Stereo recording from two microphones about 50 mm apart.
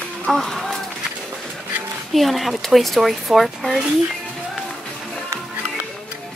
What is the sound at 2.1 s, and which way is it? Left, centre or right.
Speech, centre.